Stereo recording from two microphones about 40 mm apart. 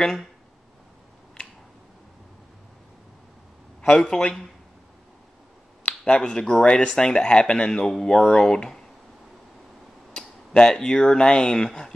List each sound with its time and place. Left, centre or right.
0.0 s speech: centre
3.8 s speech: left
5.9 s speech: left
10.1 s speech: left